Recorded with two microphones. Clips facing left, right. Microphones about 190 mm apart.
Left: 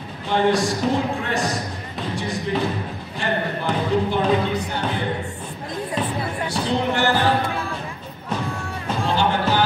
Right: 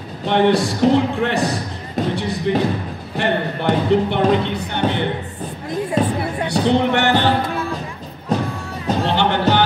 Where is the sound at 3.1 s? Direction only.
65° right (ahead or behind).